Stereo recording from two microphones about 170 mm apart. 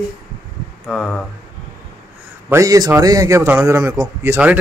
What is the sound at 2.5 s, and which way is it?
A man's voice, 20° right (ahead or behind).